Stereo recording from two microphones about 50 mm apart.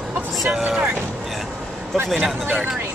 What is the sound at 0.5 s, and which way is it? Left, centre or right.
Speech, centre.